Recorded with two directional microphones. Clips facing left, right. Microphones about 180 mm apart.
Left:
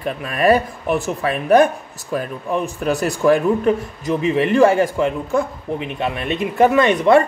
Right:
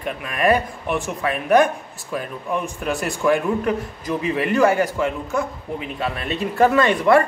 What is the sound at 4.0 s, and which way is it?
A man's voice, 25° left (ahead or behind).